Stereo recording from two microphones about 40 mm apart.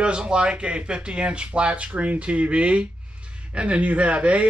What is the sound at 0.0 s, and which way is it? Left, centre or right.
A man's voice, right.